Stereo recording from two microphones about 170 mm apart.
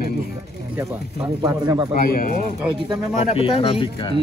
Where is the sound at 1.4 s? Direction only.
20° right (ahead or behind).